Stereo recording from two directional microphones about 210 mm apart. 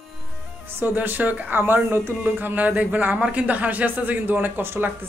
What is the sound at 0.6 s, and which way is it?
Speech, 10° right (ahead or behind).